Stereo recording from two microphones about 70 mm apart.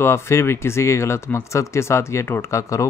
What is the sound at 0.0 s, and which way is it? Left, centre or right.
Speech, left.